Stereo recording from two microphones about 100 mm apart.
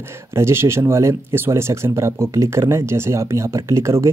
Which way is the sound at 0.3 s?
25° right (ahead or behind).